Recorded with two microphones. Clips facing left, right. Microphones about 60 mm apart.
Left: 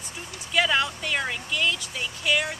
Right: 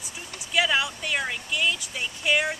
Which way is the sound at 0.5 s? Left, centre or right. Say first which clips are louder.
Left 1 dB; centre.